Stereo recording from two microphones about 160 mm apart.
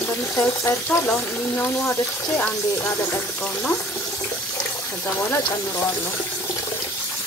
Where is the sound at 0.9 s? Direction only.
15° left (ahead or behind).